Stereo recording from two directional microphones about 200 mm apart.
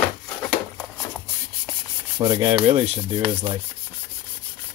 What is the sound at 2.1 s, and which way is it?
Rub, 15° right (ahead or behind).